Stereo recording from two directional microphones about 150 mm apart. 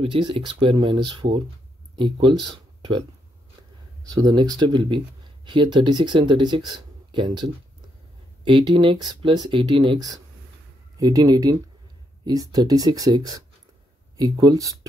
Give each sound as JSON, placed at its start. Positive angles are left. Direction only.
{"t": 0.0, "sound": "speech", "side_deg": -35}
{"t": 4.1, "sound": "speech", "side_deg": -25}